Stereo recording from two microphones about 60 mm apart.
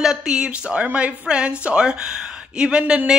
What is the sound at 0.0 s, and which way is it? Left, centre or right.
A woman's voice, centre.